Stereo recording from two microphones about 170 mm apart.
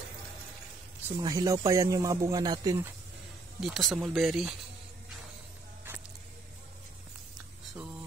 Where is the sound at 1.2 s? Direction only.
20° right (ahead or behind).